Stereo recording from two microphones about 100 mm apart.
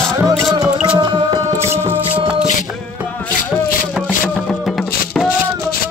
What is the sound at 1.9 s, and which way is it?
Music, 20° right (ahead or behind).